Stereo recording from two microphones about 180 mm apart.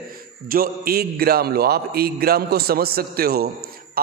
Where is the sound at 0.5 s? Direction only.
55° right (ahead or behind).